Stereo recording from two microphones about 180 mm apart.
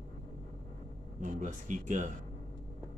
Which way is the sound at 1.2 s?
45° right (ahead or behind).